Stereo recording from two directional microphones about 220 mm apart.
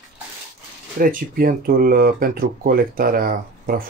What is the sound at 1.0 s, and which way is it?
Speech, 40° right (ahead or behind).